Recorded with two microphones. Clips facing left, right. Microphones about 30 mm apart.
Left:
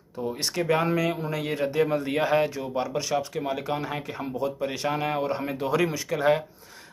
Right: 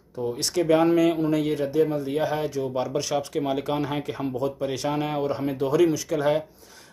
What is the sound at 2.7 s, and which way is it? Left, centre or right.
Speech, centre.